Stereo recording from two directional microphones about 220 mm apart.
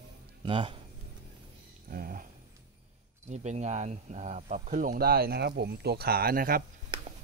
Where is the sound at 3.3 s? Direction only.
30° right (ahead or behind).